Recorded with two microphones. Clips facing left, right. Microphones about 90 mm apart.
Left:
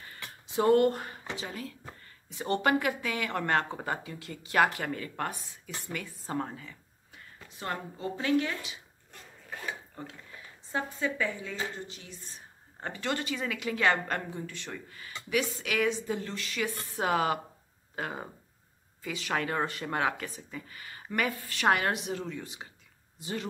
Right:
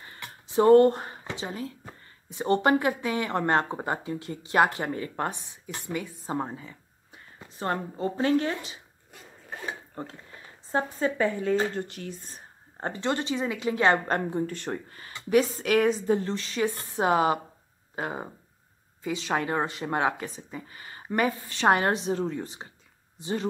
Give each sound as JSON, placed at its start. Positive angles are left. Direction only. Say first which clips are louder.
{"t": 0.0, "sound": "a sound", "louder": "right 2 dB", "side_deg": -30}
{"t": 2.8, "sound": "speech", "louder": "right 4 dB", "side_deg": -30}
{"t": 7.4, "sound": "a woman's voice", "louder": "right 6 dB", "side_deg": -35}
{"t": 9.1, "sound": "dog", "louder": "right 2 dB", "side_deg": -5}
{"t": 9.7, "sound": "a sound", "louder": "right 4 dB", "side_deg": -40}
{"t": 10.1, "sound": "speech", "louder": "right 2 dB", "side_deg": -35}
{"t": 13.0, "sound": "a woman's voice", "louder": "right 5 dB", "side_deg": -25}